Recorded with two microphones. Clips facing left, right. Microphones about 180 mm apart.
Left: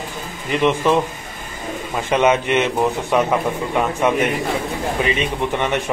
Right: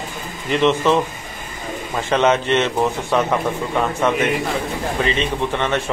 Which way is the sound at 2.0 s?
10° left (ahead or behind).